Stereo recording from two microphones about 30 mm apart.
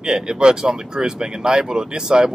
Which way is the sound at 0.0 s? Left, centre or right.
Right.